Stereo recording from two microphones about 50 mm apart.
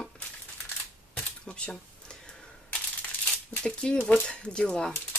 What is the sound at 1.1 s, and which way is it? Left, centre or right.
Camera, left.